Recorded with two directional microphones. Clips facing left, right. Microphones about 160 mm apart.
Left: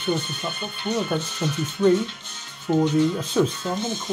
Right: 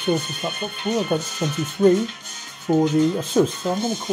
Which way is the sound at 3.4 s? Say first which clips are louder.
Right 3 dB; 15° right (ahead or behind).